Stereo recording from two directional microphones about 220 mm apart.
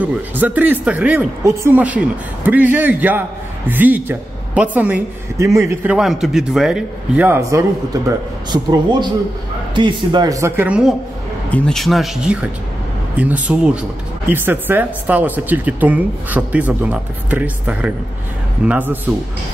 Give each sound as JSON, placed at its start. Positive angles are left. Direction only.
{"t": 0.0, "sound": "speech", "side_deg": -5}
{"t": 5.9, "sound": "a man's voice", "side_deg": 0}